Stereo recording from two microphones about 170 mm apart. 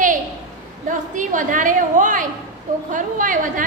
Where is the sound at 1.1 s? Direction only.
50° right (ahead or behind).